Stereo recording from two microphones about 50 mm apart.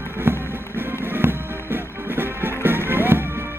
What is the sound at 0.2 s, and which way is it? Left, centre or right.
Music, right.